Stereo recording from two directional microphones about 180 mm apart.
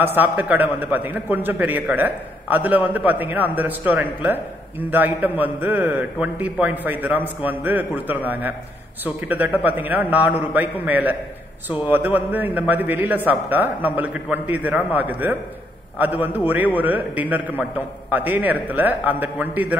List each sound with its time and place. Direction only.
0.0 s a man's voice: 10° right (ahead or behind)